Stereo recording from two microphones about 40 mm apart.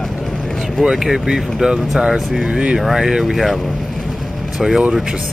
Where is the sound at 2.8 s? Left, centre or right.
Centre.